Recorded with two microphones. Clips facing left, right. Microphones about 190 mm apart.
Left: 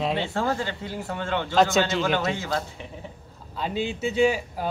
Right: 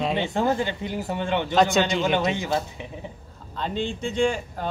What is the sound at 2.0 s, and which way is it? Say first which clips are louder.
Speech: right 2 dB; 20° right (ahead or behind).